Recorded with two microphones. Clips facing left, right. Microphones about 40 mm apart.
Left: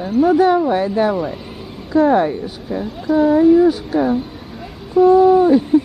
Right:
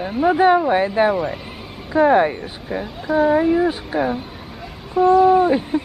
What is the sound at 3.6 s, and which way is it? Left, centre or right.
Speech, right.